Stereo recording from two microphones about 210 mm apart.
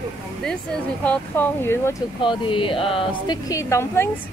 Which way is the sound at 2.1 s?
25° left (ahead or behind).